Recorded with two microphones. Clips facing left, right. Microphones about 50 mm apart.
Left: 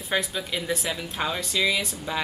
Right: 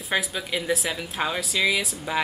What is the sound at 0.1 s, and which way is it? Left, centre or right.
Speech, centre.